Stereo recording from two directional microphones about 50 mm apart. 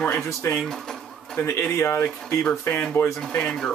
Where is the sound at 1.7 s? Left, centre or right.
Left.